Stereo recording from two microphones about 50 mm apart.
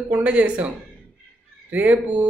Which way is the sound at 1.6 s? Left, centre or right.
Right.